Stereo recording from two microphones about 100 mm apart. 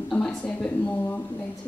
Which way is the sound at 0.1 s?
10° left (ahead or behind).